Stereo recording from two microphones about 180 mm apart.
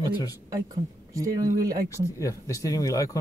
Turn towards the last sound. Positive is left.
turn(degrees=20)  # may be behind; listen again after turning